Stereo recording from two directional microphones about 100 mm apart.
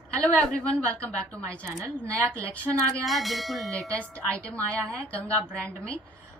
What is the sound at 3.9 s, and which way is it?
A woman's voice, 15° left (ahead or behind).